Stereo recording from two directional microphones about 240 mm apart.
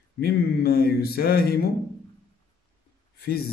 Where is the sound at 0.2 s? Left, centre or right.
Left.